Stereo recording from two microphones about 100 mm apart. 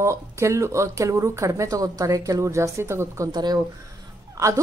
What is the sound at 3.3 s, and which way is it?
Speech, 45° right (ahead or behind).